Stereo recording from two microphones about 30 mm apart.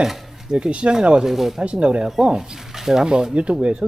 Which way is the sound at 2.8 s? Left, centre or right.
Centre.